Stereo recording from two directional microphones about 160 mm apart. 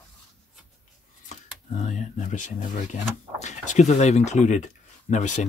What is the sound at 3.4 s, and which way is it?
Speech, 45° left (ahead or behind).